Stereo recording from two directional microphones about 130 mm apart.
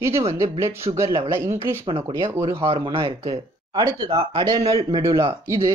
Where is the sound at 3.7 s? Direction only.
30° right (ahead or behind).